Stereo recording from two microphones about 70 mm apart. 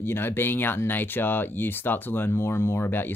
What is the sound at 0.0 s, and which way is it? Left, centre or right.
Speech, left.